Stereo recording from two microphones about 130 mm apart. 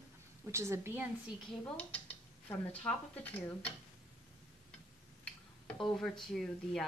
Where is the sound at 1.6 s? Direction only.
15° left (ahead or behind).